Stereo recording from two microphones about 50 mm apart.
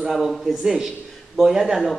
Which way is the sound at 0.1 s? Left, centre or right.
Centre.